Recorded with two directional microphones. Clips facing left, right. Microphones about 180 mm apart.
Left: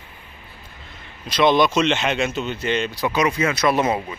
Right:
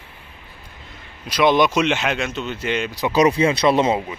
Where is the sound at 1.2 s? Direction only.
10° right (ahead or behind).